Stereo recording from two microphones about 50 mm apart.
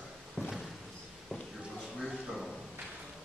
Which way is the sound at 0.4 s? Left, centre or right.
Centre.